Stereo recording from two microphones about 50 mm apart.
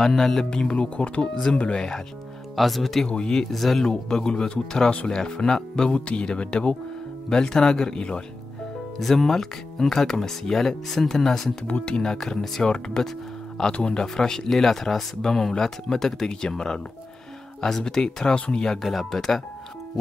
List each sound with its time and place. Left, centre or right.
0.0 s speech: centre
0.5 s speech: centre
1.2 s speech: centre
2.5 s speech: centre
3.1 s speech: centre
3.8 s speech: centre
5.9 s speech: left
9.0 s speech: centre
11.6 s speech: left
18.8 s speech: centre